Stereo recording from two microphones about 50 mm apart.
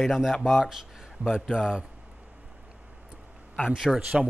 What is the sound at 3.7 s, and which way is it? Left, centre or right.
Speech, centre.